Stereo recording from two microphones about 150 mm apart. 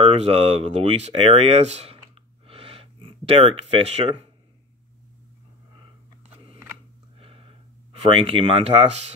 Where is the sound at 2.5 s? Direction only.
40° right (ahead or behind).